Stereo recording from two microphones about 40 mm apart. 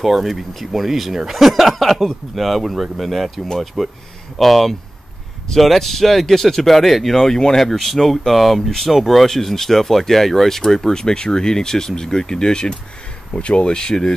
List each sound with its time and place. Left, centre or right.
0.0 s speech: centre